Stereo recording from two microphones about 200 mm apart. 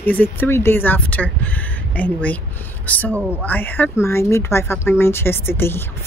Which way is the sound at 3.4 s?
10° left (ahead or behind).